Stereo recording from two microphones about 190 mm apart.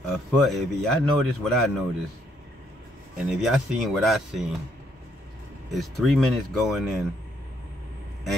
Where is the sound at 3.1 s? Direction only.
Centre (ahead or behind).